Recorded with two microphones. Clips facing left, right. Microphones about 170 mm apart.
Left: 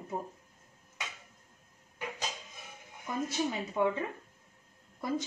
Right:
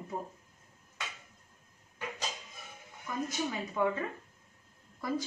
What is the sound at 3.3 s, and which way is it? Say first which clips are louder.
Speech: left 2 dB; 20° left (ahead or behind).